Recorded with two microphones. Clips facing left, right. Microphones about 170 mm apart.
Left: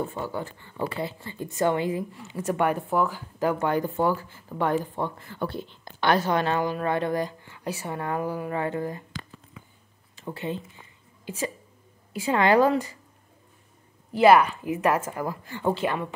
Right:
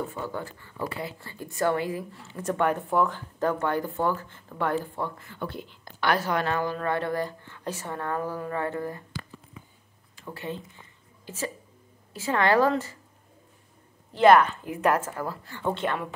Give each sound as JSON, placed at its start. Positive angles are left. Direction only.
{"t": 0.2, "sound": "speech", "side_deg": 10}
{"t": 0.5, "sound": "speech", "side_deg": 25}
{"t": 5.2, "sound": "speech", "side_deg": 35}
{"t": 10.1, "sound": "speech", "side_deg": 20}
{"t": 14.1, "sound": "speech", "side_deg": 10}